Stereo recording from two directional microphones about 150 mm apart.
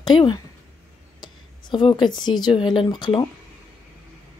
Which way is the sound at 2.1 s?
30° left (ahead or behind).